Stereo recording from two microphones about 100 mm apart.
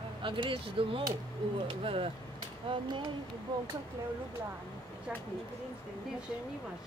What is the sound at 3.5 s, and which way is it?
Speech, 45° right (ahead or behind).